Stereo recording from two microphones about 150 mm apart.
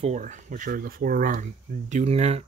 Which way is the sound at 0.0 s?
50° right (ahead or behind).